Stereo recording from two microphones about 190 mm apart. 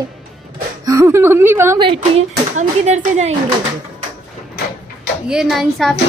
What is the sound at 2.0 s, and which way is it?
Speech, 35° right (ahead or behind).